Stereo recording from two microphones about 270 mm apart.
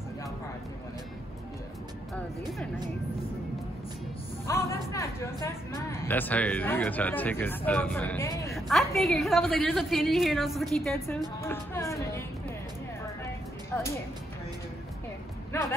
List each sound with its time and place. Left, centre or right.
4.5 s speech: centre
8.5 s a woman's voice: centre